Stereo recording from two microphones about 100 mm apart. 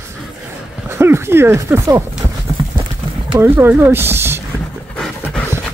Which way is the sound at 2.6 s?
60° right (ahead or behind).